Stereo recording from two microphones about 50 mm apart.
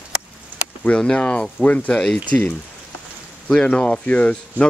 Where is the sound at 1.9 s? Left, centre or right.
Centre.